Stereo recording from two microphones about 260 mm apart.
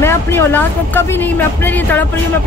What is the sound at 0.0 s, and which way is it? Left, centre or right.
Speech, centre.